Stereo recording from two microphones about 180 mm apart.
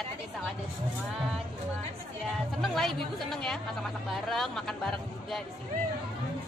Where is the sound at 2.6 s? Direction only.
Centre (ahead or behind).